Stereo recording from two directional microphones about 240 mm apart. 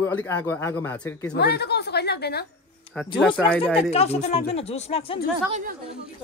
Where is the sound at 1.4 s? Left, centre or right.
Left.